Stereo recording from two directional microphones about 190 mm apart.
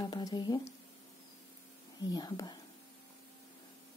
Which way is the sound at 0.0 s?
20° left (ahead or behind).